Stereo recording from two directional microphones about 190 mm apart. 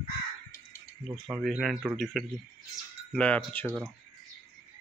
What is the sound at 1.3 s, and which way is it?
Speech, centre (ahead or behind).